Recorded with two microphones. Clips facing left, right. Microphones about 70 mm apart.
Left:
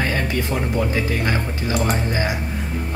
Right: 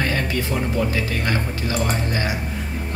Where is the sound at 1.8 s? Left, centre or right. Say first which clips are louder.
Left 2 dB; centre.